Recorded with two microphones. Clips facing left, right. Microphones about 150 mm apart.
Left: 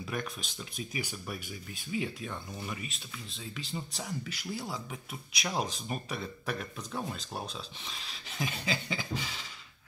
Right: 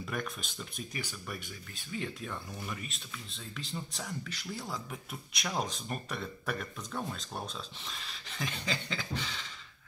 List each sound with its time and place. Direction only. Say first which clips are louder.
0.0 s speech: left 1 dB; centre (ahead or behind)